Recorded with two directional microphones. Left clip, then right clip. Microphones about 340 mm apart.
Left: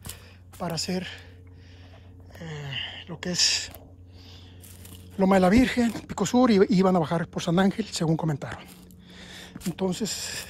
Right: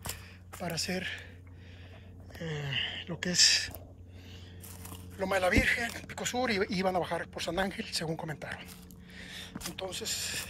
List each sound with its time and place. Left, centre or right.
0.6 s speech: centre
2.3 s speech: centre
5.2 s speech: centre
9.1 s a sound: centre